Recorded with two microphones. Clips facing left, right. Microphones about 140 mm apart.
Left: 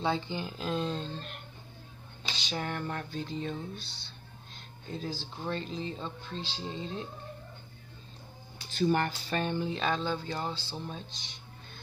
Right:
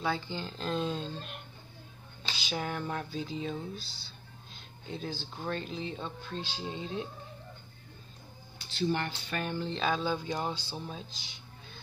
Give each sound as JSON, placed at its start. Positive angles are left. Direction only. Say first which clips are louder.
{"t": 0.0, "sound": "speech", "louder": "left 2 dB", "side_deg": 20}
{"t": 8.6, "sound": "speech", "louder": "left 4 dB", "side_deg": 45}
{"t": 9.3, "sound": "speech", "louder": "left 3 dB", "side_deg": 30}
{"t": 9.8, "sound": "speech", "louder": "even", "side_deg": -5}